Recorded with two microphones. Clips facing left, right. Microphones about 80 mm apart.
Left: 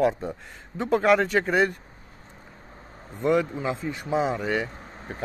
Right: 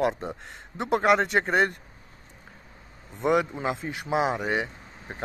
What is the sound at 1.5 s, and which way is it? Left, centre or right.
Speech, right.